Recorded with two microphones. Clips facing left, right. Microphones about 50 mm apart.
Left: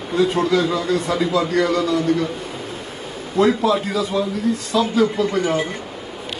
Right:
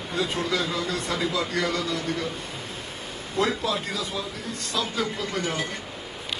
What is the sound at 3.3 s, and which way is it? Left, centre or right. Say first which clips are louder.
A man's voice: left 9 dB; centre.